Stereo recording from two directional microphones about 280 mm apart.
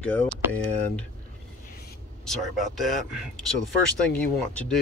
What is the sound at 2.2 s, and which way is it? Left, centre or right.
Speech, centre.